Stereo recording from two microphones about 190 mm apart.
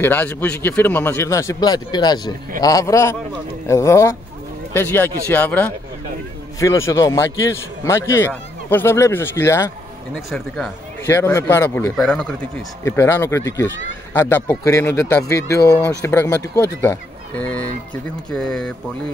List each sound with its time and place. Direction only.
0.0 s speech: 10° left (ahead or behind)
10.1 s speech: centre (ahead or behind)
11.1 s speech: 15° left (ahead or behind)